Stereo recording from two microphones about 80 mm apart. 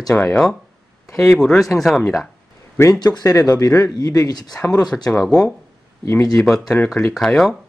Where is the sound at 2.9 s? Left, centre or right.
Left.